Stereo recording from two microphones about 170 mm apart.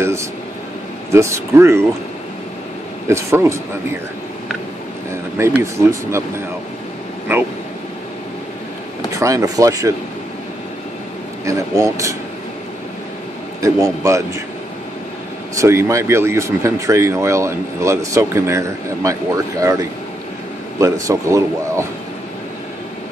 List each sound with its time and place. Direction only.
0.0 s air conditioning: 15° right (ahead or behind)
1.1 s speech: 15° right (ahead or behind)
3.1 s speech: 15° right (ahead or behind)
5.4 s speech: 15° right (ahead or behind)
9.1 s speech: 20° right (ahead or behind)
11.4 s speech: 20° right (ahead or behind)
13.6 s speech: 20° right (ahead or behind)
15.5 s speech: 15° right (ahead or behind)